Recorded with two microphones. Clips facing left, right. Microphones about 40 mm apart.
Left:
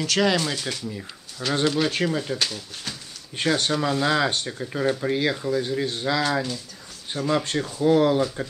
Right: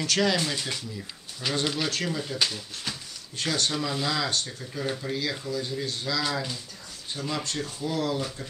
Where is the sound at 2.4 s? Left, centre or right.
Centre.